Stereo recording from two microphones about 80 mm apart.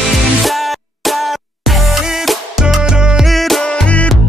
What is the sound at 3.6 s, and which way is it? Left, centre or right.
Music, centre.